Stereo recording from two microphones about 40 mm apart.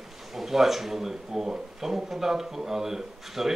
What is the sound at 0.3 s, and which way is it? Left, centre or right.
Speech, centre.